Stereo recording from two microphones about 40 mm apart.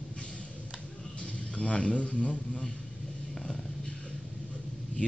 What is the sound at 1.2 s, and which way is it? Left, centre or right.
A man's voice, left.